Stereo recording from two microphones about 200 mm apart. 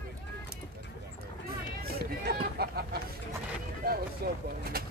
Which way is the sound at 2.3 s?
50° right (ahead or behind).